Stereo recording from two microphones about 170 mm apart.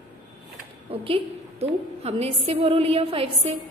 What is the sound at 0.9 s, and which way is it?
A woman's voice, 35° right (ahead or behind).